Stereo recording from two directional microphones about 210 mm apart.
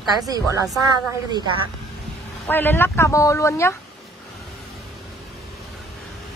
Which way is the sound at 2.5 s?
10° left (ahead or behind).